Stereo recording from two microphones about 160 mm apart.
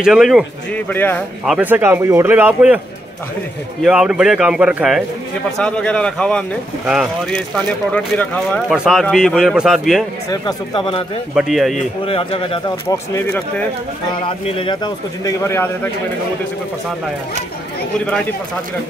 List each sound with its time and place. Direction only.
0.0 s speech: 5° right (ahead or behind)
0.8 s speech: 10° left (ahead or behind)
1.4 s a man's voice: 5° right (ahead or behind)
3.8 s speech: 5° right (ahead or behind)
5.6 s speech: 5° left (ahead or behind)
7.5 s speech: 5° left (ahead or behind)
10.3 s speech: 30° left (ahead or behind)
11.3 s speech: centre (ahead or behind)
12.0 s speech: 35° left (ahead or behind)
12.9 s speech: 20° left (ahead or behind)
14.2 s speech: 30° left (ahead or behind); by 15.9 s 15° left (ahead or behind)
18.0 s speech: 10° left (ahead or behind)